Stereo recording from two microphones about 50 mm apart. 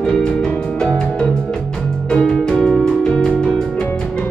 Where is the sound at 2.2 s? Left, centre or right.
Centre.